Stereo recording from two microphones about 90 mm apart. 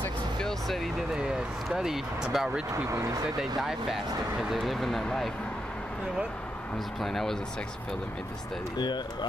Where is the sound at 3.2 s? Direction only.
5° right (ahead or behind).